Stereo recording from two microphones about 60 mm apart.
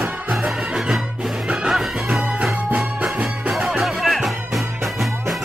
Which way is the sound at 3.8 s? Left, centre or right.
Centre.